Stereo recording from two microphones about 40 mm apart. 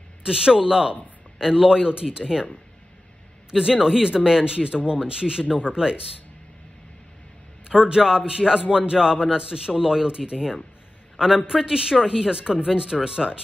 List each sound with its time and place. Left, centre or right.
0.2 s a man's voice: centre
3.5 s a man's voice: centre
7.6 s a man's voice: centre